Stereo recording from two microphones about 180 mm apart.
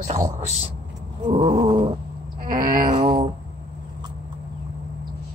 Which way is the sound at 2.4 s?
50° right (ahead or behind).